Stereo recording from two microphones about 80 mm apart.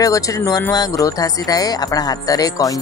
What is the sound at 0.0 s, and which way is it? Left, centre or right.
Speech, left.